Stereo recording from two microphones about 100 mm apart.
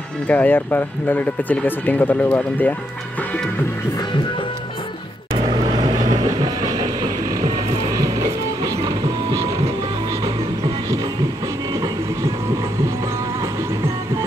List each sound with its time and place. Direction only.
0.3 s speech: 15° left (ahead or behind)
5.4 s vehicle: 45° right (ahead or behind)
8.8 s music: 35° right (ahead or behind)